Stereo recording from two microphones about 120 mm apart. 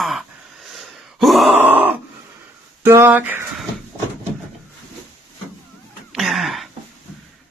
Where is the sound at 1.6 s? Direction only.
15° right (ahead or behind).